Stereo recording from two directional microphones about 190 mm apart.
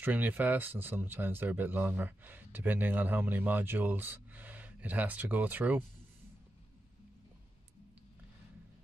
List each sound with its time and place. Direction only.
0.0 s speech: 10° right (ahead or behind)